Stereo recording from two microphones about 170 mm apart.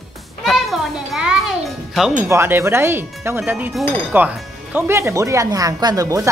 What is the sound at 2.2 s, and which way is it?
Speech, 15° right (ahead or behind).